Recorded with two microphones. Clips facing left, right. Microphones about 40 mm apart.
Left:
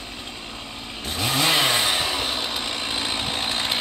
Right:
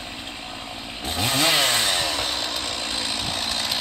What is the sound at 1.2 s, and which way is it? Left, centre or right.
Chainsaw, centre.